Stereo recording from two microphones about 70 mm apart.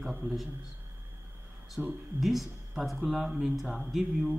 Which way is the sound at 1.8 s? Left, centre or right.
Right.